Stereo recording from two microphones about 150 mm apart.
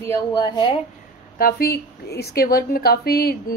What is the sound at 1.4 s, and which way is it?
Speech, 85° left.